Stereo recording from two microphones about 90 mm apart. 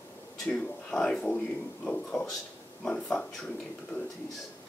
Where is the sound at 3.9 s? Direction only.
25° left (ahead or behind).